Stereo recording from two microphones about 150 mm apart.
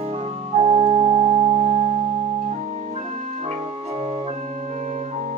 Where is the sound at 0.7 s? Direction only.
45° right (ahead or behind).